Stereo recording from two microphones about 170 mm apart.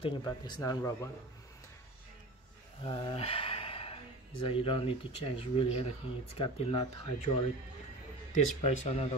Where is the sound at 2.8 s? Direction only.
30° left (ahead or behind).